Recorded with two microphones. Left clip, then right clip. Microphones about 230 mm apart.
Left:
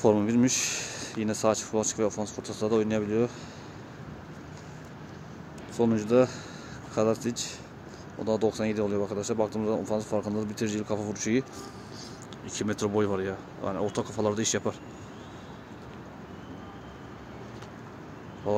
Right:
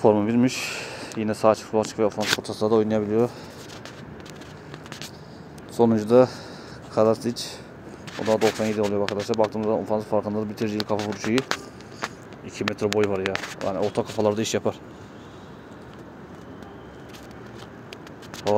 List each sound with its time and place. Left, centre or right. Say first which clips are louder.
0.0 s speech: right 4 dB; centre
2.4 s speech: right 2 dB; centre
5.8 s speech: right 6 dB; centre
12.5 s speech: right 5 dB; centre